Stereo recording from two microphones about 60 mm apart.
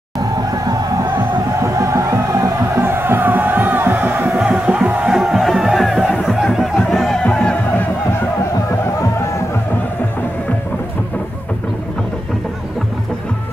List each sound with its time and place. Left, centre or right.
1.6 s music: right
2.8 s music: right
4.3 s music: right
5.0 s music: centre
7.2 s music: centre